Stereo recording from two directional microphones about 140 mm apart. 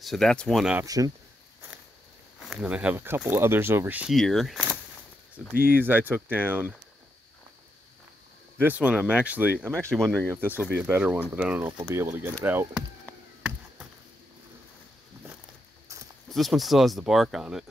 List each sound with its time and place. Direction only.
0.0 s speech: centre (ahead or behind)
0.8 s speech: 25° right (ahead or behind)
2.5 s speech: 10° right (ahead or behind)
4.1 s speech: centre (ahead or behind)
5.8 s speech: 15° right (ahead or behind)
8.5 s speech: 10° right (ahead or behind)
9.9 s speech: 5° left (ahead or behind)
10.2 s speech: 15° right (ahead or behind)
16.3 s speech: centre (ahead or behind)